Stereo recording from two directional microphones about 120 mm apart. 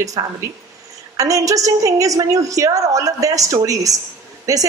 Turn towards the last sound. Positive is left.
turn(degrees=-30)  # may be behind; listen again after turning